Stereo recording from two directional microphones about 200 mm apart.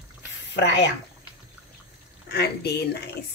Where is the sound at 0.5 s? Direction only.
60° left (ahead or behind).